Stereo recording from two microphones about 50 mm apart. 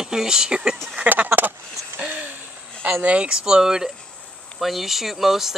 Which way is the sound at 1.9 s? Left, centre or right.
Right.